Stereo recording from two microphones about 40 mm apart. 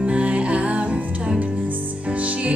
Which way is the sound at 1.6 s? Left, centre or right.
Right.